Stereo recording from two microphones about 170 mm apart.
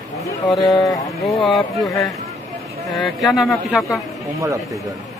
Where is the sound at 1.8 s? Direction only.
20° left (ahead or behind).